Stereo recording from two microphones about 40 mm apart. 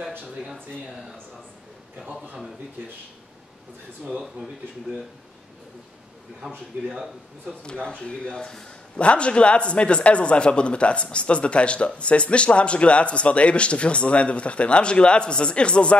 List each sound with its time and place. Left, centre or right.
7.6 s a man's voice: left
8.9 s a man's voice: left